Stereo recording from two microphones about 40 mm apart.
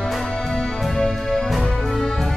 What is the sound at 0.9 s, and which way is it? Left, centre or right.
Music, centre.